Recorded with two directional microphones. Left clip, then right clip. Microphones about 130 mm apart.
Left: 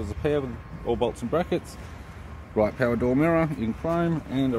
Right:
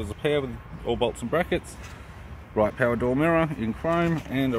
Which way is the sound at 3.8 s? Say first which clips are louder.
Right 2 dB; 20° right (ahead or behind).